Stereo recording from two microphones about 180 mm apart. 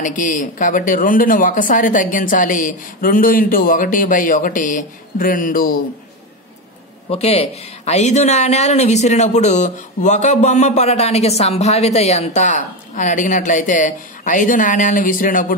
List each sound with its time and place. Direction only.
0.0 s speech: 45° left (ahead or behind)
7.1 s speech: 35° left (ahead or behind)